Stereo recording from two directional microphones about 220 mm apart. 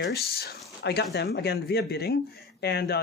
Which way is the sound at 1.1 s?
45° left (ahead or behind).